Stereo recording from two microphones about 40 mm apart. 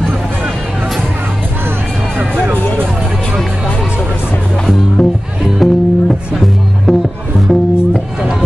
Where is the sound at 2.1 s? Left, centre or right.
Right.